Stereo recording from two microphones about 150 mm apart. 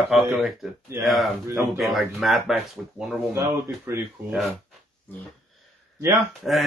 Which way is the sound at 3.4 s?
20° right (ahead or behind).